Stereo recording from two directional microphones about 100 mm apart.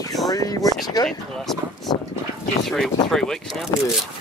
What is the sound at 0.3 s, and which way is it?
Speech, 40° left (ahead or behind).